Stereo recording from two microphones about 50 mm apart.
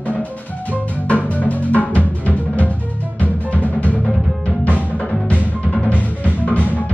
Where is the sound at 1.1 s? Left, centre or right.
Left.